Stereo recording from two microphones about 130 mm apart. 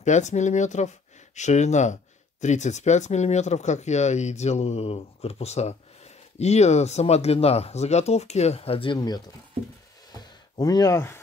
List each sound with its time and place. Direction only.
0.0 s speech: 65° left (ahead or behind); by 11.1 s 25° left (ahead or behind)